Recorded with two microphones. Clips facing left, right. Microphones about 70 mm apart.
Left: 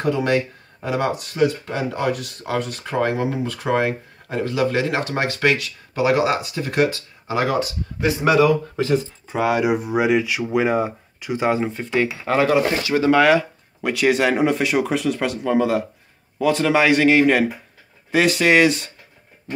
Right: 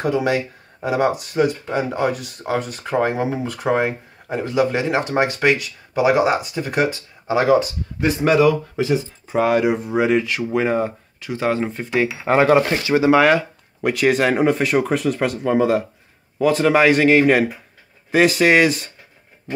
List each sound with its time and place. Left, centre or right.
1.3 s speech: centre
8.0 s speech: centre
11.6 s speech: centre
12.3 s speech: right
12.9 s speech: centre
13.2 s speech: centre